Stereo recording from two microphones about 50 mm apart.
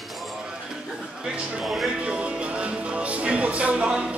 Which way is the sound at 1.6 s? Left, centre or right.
Centre.